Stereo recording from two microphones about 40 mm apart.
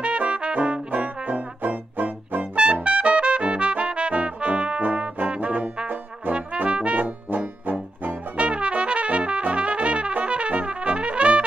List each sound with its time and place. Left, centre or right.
0.0 s trombone: right
2.5 s trumpet: right
4.1 s brass instrument: right
4.8 s trombone: right
5.3 s music: right
5.9 s trombone: right
6.5 s brass instrument: right
7.0 s music: right
8.4 s trumpet: right